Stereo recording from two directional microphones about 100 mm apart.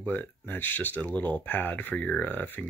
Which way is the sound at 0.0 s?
20° left (ahead or behind).